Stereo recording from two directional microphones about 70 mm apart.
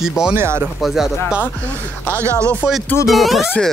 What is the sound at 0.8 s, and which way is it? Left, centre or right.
Speech, centre.